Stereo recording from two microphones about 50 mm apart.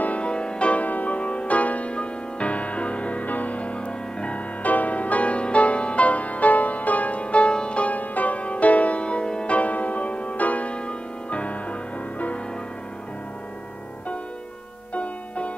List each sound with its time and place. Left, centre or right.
0.0 s music: left
15.0 s music: left